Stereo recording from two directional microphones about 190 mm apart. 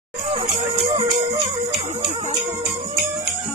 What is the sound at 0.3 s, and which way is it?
Music, 25° right (ahead or behind).